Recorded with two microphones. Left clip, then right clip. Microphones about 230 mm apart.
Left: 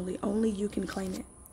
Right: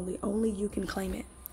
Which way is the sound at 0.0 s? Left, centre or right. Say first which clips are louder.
Left 1 dB; centre.